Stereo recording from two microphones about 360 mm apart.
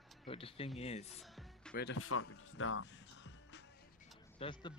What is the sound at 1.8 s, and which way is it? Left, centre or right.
Speech, left.